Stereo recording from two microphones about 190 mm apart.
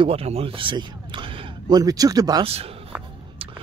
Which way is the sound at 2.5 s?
30° right (ahead or behind).